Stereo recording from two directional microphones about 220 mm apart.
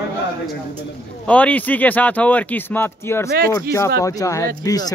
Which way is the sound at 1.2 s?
5° left (ahead or behind).